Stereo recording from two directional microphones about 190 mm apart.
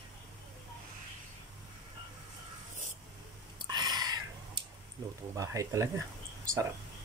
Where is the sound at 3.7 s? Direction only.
20° right (ahead or behind).